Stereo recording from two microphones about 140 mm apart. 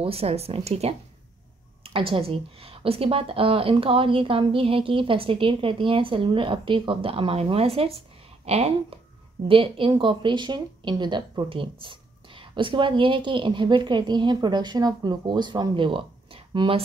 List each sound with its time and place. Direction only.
0.0 s speech: 45° right (ahead or behind)